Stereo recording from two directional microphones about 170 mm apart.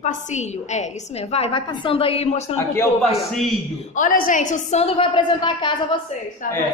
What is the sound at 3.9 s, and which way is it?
A woman's voice, 50° left (ahead or behind).